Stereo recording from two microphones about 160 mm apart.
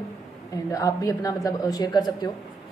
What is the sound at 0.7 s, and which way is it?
A woman's voice, 20° left (ahead or behind).